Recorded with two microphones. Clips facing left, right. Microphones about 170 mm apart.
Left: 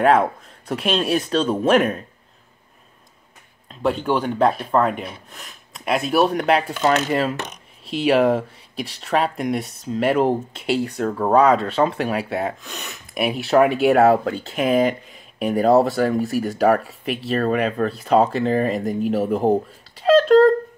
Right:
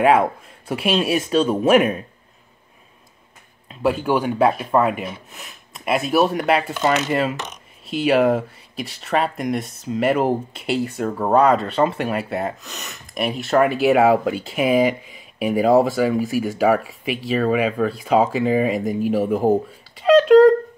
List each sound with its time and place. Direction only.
0.0 s speech: 5° right (ahead or behind)
3.6 s speech: 5° right (ahead or behind)